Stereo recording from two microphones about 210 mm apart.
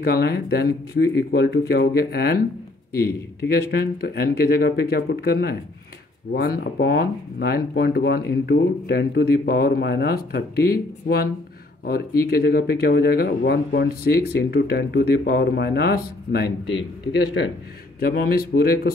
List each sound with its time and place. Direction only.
0.0 s speech: 50° left (ahead or behind)
3.4 s speech: 50° left (ahead or behind)
12.3 s speech: 45° left (ahead or behind)